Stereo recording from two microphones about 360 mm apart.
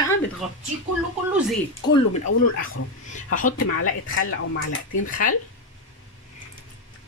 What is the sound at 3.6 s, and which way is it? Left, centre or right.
Speech, left.